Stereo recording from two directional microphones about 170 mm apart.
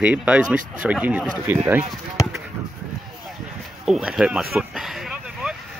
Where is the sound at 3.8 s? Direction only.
Centre (ahead or behind).